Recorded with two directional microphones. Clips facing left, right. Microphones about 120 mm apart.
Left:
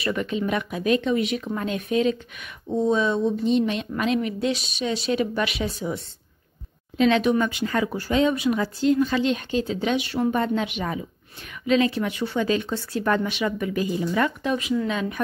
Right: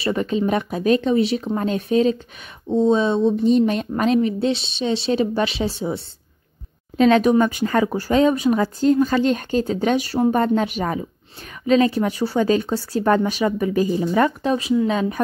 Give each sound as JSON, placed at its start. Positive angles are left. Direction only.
{"t": 0.0, "sound": "speech", "side_deg": -35}
{"t": 3.4, "sound": "speech", "side_deg": -40}
{"t": 7.0, "sound": "speech", "side_deg": -40}